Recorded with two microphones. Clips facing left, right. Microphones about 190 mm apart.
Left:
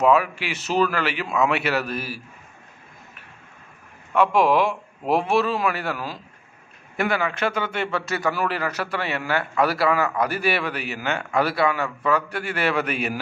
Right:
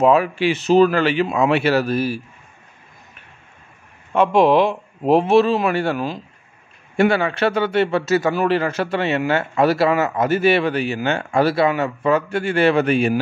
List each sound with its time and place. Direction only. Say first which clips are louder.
0.0 s a man's voice: right 4 dB; 30° right (ahead or behind)
4.1 s a man's voice: right 4 dB; 25° right (ahead or behind)